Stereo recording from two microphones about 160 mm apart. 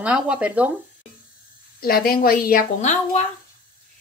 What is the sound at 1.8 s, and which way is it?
Speech, 70° left (ahead or behind).